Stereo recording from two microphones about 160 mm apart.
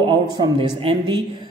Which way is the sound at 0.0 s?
30° right (ahead or behind).